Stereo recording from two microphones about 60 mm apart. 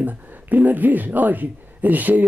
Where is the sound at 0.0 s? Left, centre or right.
Right.